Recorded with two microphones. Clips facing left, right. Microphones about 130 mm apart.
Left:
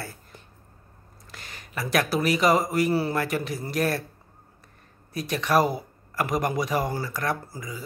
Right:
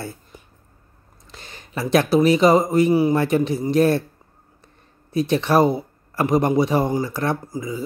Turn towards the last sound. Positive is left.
turn(degrees=-25)  # may be behind; listen again after turning